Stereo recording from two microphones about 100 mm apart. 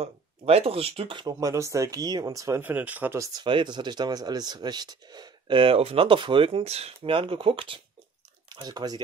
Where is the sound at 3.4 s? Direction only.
55° right (ahead or behind); by 6.9 s 85° right.